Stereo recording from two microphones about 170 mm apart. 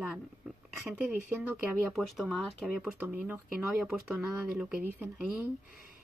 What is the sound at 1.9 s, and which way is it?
Speech, centre (ahead or behind).